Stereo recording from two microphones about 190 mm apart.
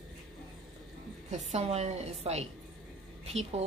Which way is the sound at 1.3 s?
35° right (ahead or behind).